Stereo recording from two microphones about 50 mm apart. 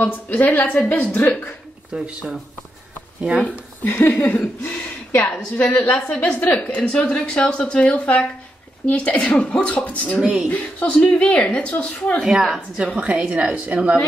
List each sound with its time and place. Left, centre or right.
0.1 s speech: left
1.9 s a woman's voice: right
3.2 s speech: centre
3.8 s a woman's voice: left
6.0 s a woman's voice: centre
10.2 s a woman's voice: centre
10.5 s a woman's voice: left
12.7 s a woman's voice: right